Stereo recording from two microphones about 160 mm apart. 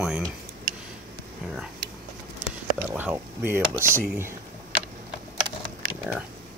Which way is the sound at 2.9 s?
10° right (ahead or behind).